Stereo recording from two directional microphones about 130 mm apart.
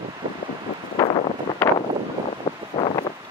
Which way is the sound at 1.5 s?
30° left (ahead or behind).